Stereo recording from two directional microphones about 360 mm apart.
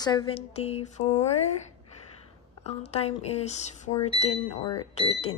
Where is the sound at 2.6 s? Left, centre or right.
Centre.